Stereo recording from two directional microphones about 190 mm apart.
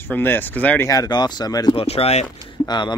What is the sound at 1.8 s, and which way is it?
Speech, 30° left (ahead or behind).